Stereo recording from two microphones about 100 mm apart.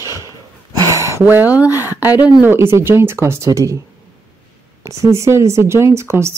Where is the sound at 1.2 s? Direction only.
20° right (ahead or behind).